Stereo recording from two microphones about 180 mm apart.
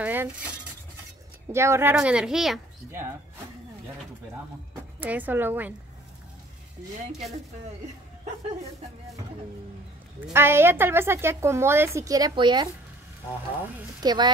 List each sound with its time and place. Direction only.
0.0 s speech: 10° right (ahead or behind)
1.5 s speech: 15° right (ahead or behind)
5.0 s a woman's voice: 10° right (ahead or behind)
10.3 s a woman's voice: 15° right (ahead or behind)
14.0 s a woman's voice: 25° right (ahead or behind)